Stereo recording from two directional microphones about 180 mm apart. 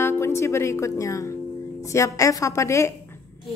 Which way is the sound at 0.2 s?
15° left (ahead or behind).